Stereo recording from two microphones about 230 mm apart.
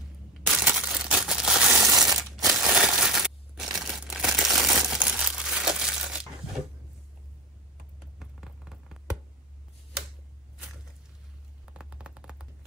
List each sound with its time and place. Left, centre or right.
0.7 s crumpling: centre
1.9 s a sound: centre
2.4 s crushing: centre
3.7 s crumpling: centre
8.2 s vehicle: centre
11.7 s a sound: centre